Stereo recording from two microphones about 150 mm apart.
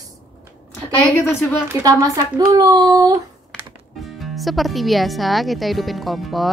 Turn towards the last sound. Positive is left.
turn(degrees=0)  # may be behind; listen again after turning